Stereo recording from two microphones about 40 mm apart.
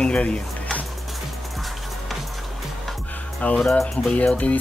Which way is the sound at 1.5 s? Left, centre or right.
Centre.